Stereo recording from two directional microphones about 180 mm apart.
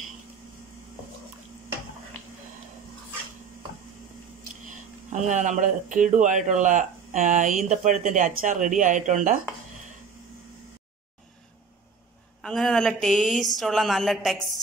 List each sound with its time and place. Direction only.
5.1 s speech: 45° right (ahead or behind)
12.4 s speech: centre (ahead or behind)